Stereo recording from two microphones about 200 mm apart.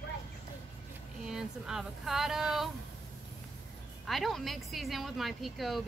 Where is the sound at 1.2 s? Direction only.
Centre (ahead or behind).